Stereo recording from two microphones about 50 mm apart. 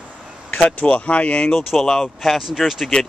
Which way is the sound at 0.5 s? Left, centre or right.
Left.